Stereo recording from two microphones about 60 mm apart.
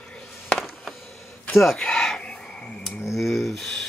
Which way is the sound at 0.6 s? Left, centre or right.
Centre.